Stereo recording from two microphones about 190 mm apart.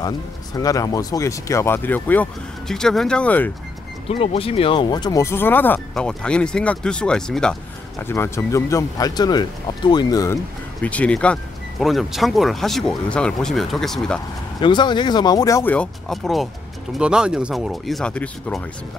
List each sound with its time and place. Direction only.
0.6 s speech: 20° left (ahead or behind)
4.1 s speech: 30° left (ahead or behind); by 14.2 s 5° left (ahead or behind)
14.6 s speech: 25° left (ahead or behind); by 18.6 s 5° left (ahead or behind)